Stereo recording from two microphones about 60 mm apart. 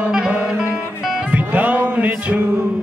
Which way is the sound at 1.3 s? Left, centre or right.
Right.